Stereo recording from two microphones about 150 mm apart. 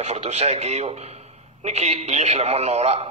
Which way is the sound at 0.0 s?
45° right (ahead or behind).